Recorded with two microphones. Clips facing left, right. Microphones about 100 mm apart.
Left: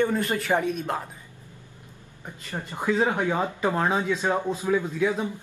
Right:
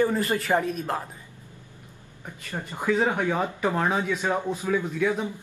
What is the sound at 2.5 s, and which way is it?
Speech, 15° left (ahead or behind).